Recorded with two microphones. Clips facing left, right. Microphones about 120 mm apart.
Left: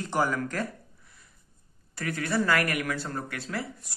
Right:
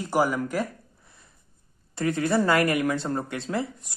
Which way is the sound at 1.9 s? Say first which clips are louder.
Right 6 dB; 25° right (ahead or behind).